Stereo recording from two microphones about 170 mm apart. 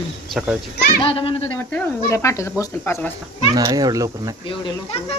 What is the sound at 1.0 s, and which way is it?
Speech, 30° left (ahead or behind).